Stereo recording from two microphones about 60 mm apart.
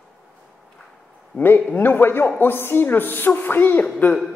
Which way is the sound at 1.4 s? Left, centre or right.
Left.